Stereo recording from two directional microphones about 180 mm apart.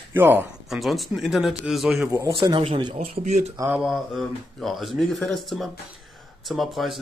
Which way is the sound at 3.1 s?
40° right (ahead or behind).